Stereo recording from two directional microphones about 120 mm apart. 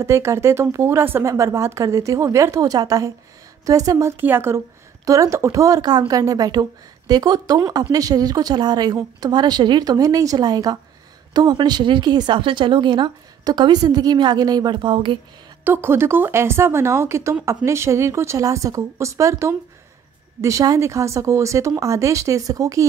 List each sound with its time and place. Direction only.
0.0 s speech: 25° right (ahead or behind)
4.2 s a woman's voice: 20° right (ahead or behind); by 15.1 s 40° right (ahead or behind)
15.6 s speech: 20° right (ahead or behind)